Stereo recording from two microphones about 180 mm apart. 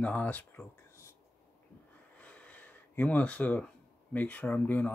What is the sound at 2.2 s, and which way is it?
Gasp, 5° left (ahead or behind).